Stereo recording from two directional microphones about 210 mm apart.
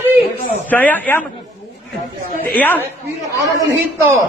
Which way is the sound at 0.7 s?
10° left (ahead or behind).